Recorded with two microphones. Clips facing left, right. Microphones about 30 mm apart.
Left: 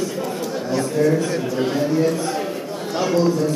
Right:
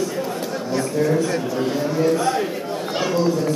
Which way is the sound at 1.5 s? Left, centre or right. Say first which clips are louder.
Left 1 dB; centre.